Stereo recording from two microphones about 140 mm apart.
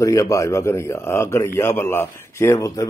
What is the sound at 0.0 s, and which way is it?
A man's voice, 20° left (ahead or behind).